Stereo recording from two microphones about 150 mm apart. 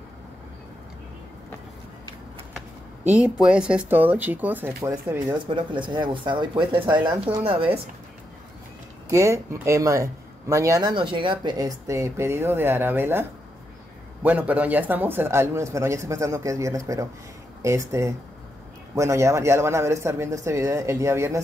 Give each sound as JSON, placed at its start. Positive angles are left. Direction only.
{"t": 2.5, "sound": "a sound", "side_deg": -10}
{"t": 3.3, "sound": "a man's voice", "side_deg": -5}
{"t": 5.3, "sound": "speech", "side_deg": -35}
{"t": 9.1, "sound": "speech", "side_deg": -20}
{"t": 10.9, "sound": "a man's voice", "side_deg": -35}